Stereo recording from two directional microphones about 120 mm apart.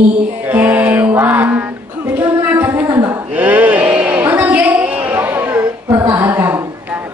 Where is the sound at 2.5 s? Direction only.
15° right (ahead or behind).